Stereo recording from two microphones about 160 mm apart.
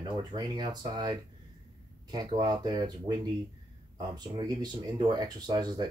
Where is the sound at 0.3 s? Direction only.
25° right (ahead or behind).